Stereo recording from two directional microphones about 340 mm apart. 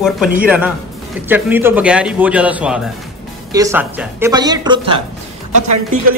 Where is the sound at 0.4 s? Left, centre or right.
Centre.